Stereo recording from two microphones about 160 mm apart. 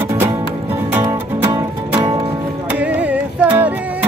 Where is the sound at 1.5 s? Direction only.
25° right (ahead or behind).